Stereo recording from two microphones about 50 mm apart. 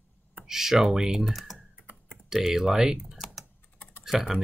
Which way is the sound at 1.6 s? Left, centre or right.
Right.